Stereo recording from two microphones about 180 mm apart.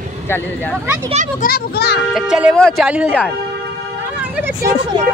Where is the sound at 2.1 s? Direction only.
5° right (ahead or behind).